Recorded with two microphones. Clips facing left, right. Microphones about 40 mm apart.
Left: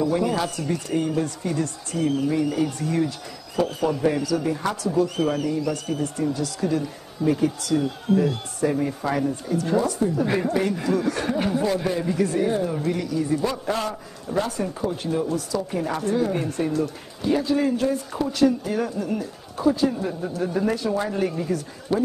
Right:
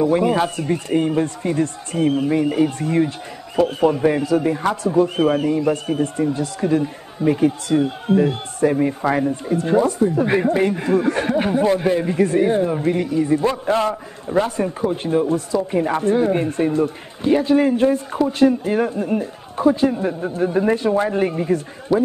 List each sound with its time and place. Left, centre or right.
0.0 s a man's voice: right